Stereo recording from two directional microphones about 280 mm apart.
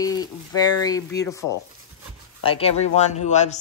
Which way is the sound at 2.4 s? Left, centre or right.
Centre.